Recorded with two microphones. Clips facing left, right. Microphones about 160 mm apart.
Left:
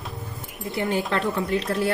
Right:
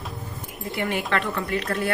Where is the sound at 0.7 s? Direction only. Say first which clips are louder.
Left 1 dB; 20° left (ahead or behind).